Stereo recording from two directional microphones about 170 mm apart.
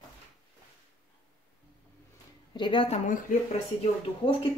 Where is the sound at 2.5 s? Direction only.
25° left (ahead or behind).